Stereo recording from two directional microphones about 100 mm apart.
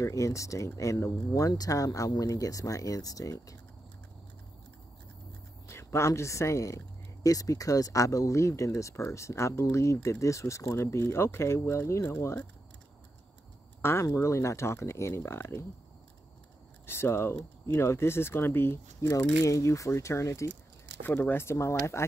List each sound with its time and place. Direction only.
0.0 s speech: 30° left (ahead or behind)
5.7 s speech: 30° left (ahead or behind)
13.7 s speech: 25° left (ahead or behind)
16.8 s speech: 25° left (ahead or behind)